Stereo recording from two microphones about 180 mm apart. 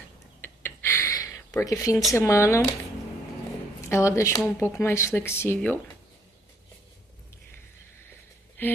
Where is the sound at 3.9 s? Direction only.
15° left (ahead or behind).